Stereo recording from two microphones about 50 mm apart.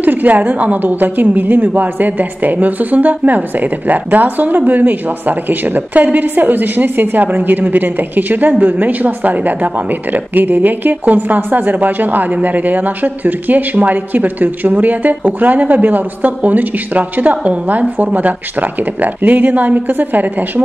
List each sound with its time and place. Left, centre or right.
0.0 s a woman's voice: right